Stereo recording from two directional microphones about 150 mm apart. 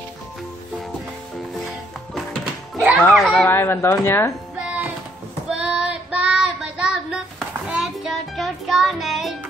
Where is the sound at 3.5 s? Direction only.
15° left (ahead or behind).